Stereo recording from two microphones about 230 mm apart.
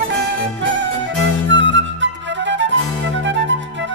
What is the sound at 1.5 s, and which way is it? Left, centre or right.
Music, right.